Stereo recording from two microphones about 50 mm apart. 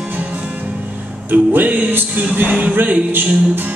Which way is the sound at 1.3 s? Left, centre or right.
Right.